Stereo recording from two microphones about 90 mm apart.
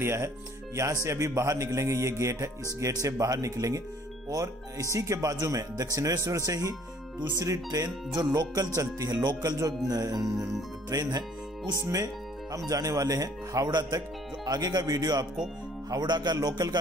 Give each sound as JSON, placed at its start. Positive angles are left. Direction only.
{"t": 0.0, "sound": "speech", "side_deg": -30}